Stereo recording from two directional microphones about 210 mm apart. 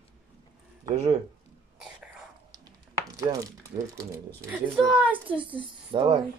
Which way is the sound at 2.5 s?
15° right (ahead or behind).